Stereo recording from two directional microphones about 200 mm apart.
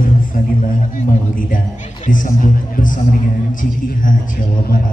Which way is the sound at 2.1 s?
40° left (ahead or behind).